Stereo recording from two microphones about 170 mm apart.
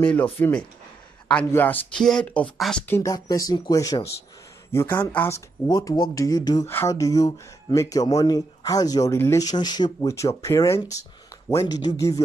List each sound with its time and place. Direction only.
0.0 s speech: 10° left (ahead or behind)
2.9 s speech: 20° left (ahead or behind)